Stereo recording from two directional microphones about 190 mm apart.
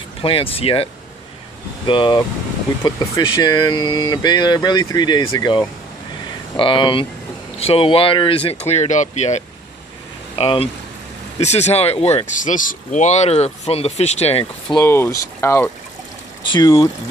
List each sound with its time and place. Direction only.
0.2 s speech: 30° left (ahead or behind)
1.9 s speech: 25° left (ahead or behind)
14.8 s speech: 15° left (ahead or behind)